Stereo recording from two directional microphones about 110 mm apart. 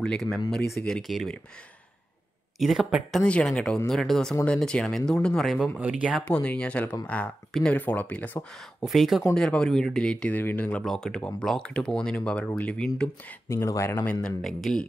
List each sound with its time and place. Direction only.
0.0 s speech: 5° left (ahead or behind)
2.6 s speech: 5° right (ahead or behind)
5.8 s speech: 10° right (ahead or behind)
6.2 s speech: 10° left (ahead or behind)
8.8 s speech: 5° right (ahead or behind); by 10.8 s 15° left (ahead or behind)
10.8 s speech: 5° left (ahead or behind)
13.5 s speech: 25° left (ahead or behind)
14.2 s speech: 5° left (ahead or behind)